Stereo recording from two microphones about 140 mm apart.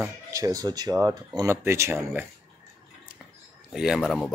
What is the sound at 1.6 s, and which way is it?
Speech, 20° right (ahead or behind).